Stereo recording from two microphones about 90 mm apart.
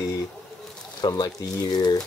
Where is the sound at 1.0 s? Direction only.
50° left (ahead or behind).